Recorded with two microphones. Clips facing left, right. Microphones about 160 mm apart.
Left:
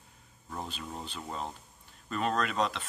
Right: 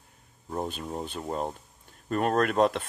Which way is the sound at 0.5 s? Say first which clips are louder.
Right 7 dB; 50° right (ahead or behind).